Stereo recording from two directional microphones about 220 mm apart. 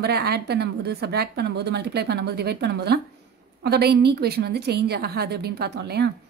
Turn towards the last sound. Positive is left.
turn(degrees=-50)  # may be behind; listen again after turning